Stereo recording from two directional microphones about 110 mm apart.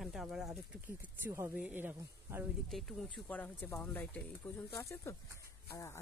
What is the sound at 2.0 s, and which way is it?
Speech, 25° right (ahead or behind).